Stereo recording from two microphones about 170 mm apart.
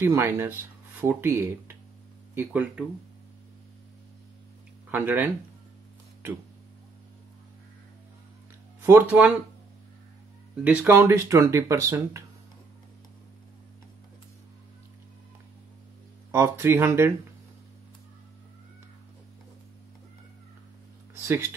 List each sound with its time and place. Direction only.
0.0 s speech: 15° right (ahead or behind)
4.8 s speech: 10° right (ahead or behind)
8.8 s speech: 10° right (ahead or behind)
10.5 s speech: 10° right (ahead or behind)
16.3 s speech: 15° right (ahead or behind)
21.1 s a sound: 15° right (ahead or behind)